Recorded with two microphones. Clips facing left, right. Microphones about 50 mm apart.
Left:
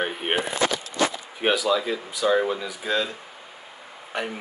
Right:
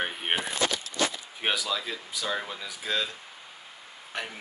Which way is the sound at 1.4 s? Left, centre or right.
Centre.